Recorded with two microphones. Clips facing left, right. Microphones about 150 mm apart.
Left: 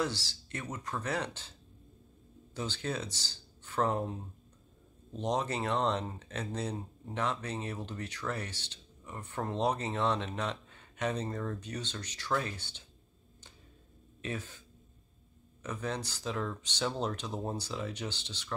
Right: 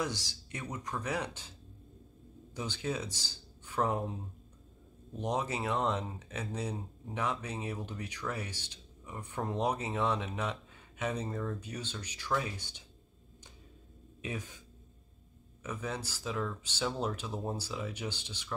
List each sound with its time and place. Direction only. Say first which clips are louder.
0.0 s speech: left 2 dB; 15° right (ahead or behind)
2.5 s speech: even; 10° right (ahead or behind)
5.1 s speech: left 1 dB; 10° right (ahead or behind)
14.2 s speech: left 1 dB; 15° right (ahead or behind)
15.6 s speech: left 2 dB; 10° right (ahead or behind)